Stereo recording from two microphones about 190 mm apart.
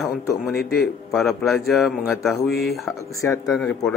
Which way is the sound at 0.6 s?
55° left (ahead or behind).